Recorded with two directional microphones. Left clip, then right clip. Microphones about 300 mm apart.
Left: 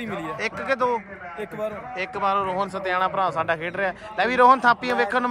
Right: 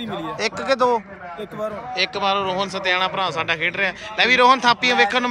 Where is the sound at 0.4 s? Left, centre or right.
Centre.